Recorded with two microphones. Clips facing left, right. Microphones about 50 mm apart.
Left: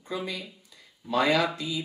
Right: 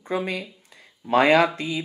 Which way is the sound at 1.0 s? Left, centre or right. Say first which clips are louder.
Right 7 dB; right.